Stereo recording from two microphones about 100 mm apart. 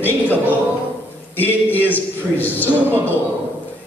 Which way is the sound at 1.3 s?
20° left (ahead or behind).